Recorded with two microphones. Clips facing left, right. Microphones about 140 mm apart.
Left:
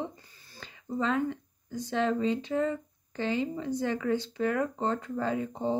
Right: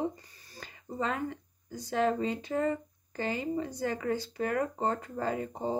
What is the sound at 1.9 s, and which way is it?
Speech, 45° right (ahead or behind).